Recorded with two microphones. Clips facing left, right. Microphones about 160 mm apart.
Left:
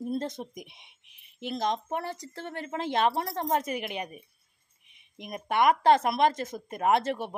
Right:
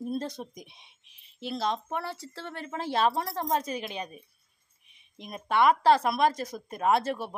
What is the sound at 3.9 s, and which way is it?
Speech, 20° left (ahead or behind).